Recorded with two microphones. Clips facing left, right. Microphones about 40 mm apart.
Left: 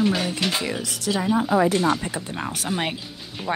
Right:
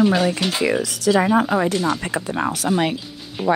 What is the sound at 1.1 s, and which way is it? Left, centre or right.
Speech, right.